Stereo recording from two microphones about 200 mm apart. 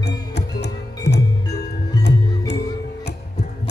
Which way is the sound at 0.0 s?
55° left (ahead or behind).